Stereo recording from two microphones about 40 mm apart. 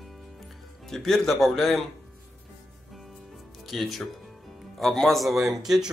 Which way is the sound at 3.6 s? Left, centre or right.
Centre.